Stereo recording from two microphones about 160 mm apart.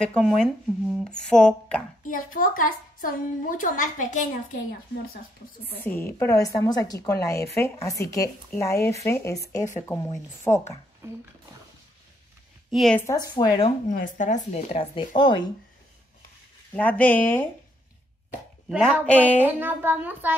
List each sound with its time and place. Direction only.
0.0 s speech: 5° left (ahead or behind)
2.0 s a woman's voice: 60° left (ahead or behind)
5.9 s a woman's voice: 15° left (ahead or behind)
12.7 s speech: centre (ahead or behind)
13.0 s a woman's voice: 20° left (ahead or behind)
13.8 s speech: 55° left (ahead or behind); by 15.4 s 30° left (ahead or behind)
16.7 s speech: 10° left (ahead or behind)
18.7 s speech: 5° right (ahead or behind)
19.0 s speech: 10° left (ahead or behind)
19.4 s speech: 15° right (ahead or behind)